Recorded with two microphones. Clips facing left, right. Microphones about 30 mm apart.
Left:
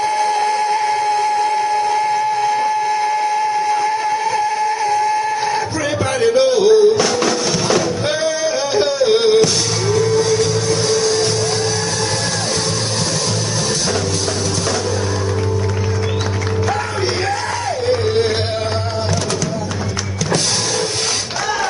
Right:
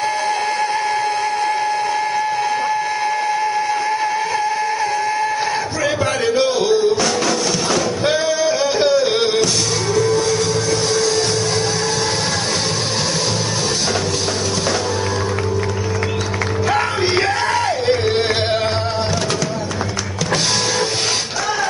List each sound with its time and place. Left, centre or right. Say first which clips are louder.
0.2 s a sound: left 3 dB; centre
6.2 s music: left 6 dB; centre
8.1 s music: right 3 dB; centre
17.8 s music: left 5 dB; right